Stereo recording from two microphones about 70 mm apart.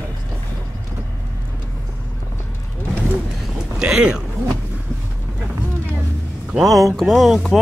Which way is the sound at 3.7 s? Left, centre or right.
Centre.